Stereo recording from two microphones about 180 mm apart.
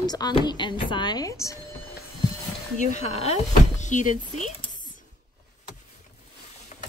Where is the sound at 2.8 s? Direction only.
40° left (ahead or behind).